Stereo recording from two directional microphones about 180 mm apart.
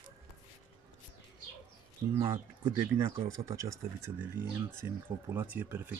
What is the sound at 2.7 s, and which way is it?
Speech, 20° right (ahead or behind).